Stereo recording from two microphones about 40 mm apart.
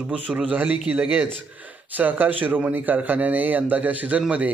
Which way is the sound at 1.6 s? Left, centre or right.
Right.